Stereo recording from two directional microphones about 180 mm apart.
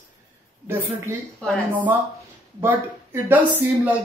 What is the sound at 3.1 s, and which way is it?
Speech, 10° right (ahead or behind).